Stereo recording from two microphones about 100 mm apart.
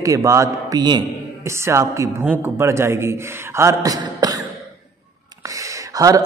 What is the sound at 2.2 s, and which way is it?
A man's voice, 20° right (ahead or behind).